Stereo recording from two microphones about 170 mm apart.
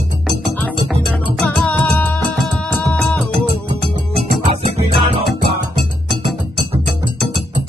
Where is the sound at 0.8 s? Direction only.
Centre (ahead or behind).